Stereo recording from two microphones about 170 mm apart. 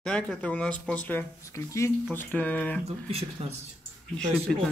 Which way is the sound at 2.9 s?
35° right (ahead or behind).